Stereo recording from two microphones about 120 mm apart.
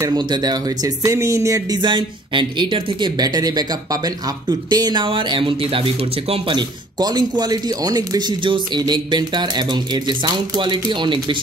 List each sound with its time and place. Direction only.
0.0 s speech: 35° right (ahead or behind)
1.8 s speech: 40° right (ahead or behind)
7.0 s speech: 35° right (ahead or behind)